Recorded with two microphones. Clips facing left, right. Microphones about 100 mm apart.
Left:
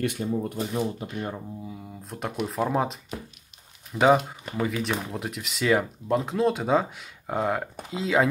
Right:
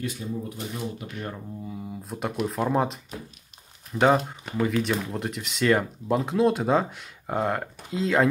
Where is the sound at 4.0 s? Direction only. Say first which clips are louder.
Left 1 dB; centre (ahead or behind).